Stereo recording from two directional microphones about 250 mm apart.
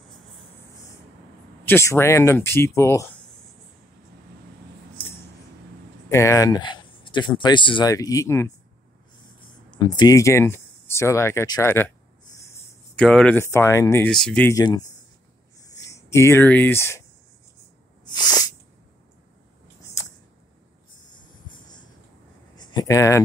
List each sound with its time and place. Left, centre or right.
1.7 s speech: centre
6.0 s speech: centre
15.6 s a sound: centre
18.0 s sneeze: centre
21.5 s a sound: centre
22.6 s speech: centre